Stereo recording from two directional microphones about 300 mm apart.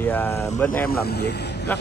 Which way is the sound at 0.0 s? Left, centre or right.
Centre.